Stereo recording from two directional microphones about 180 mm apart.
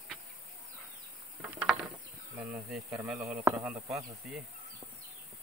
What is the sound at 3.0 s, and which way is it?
Speech, 5° right (ahead or behind).